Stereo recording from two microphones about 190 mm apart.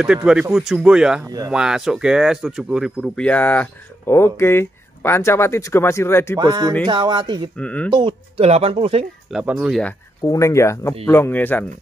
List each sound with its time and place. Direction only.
0.0 s speech: 5° right (ahead or behind); by 6.3 s 15° left (ahead or behind)
6.3 s speech: 20° right (ahead or behind)
7.5 s speech: 5° left (ahead or behind)
7.9 s speech: 25° right (ahead or behind)
9.3 s speech: 5° right (ahead or behind)
10.2 s speech: 15° left (ahead or behind)